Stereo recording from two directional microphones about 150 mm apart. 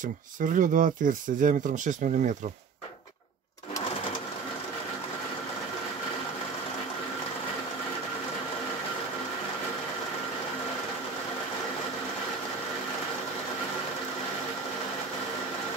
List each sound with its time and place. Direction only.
0.0 s speech: 60° right (ahead or behind)